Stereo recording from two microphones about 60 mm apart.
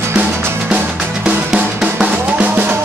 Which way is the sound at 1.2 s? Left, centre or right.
Centre.